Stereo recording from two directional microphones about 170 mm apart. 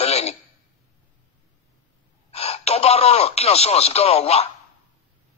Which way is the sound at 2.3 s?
40° left (ahead or behind).